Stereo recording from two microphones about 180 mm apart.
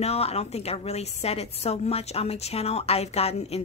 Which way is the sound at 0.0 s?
35° left (ahead or behind).